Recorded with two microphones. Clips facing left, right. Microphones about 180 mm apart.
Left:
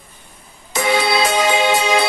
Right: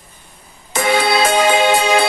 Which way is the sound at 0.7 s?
50° right (ahead or behind).